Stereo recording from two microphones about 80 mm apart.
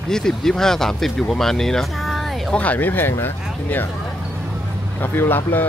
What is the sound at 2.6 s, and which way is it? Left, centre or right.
Speech, left.